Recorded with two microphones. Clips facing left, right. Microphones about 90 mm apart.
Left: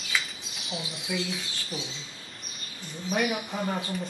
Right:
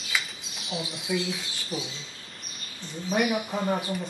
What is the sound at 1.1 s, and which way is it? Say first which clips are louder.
Speech: right 3 dB; 10° right (ahead or behind).